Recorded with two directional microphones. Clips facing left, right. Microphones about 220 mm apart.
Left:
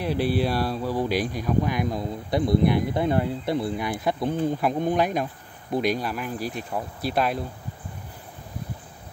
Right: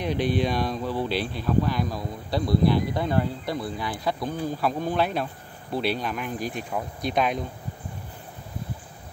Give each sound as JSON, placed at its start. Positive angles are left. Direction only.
{"t": 0.0, "sound": "speech", "side_deg": 5}